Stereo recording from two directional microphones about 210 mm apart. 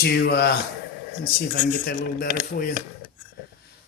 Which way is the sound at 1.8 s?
45° left (ahead or behind).